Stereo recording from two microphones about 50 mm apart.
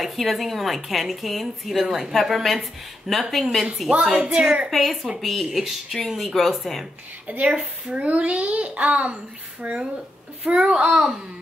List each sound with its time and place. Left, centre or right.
0.0 s a woman's voice: centre
4.4 s a child's voice: right
4.6 s a woman's voice: centre
7.2 s a child's voice: right